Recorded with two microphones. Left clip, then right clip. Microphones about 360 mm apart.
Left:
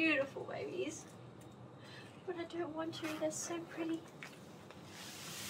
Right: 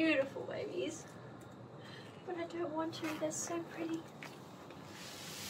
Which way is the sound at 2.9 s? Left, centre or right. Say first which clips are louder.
Even; centre.